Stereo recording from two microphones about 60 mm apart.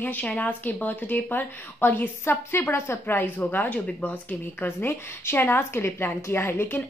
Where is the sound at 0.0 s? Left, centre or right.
Left.